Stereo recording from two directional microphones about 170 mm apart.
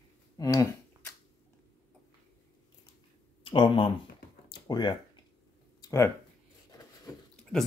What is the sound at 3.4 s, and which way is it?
Speech, 30° left (ahead or behind).